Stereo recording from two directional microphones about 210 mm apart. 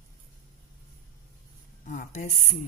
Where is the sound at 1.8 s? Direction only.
35° left (ahead or behind).